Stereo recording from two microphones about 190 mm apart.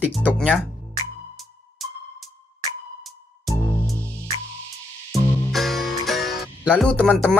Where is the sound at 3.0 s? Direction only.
5° left (ahead or behind).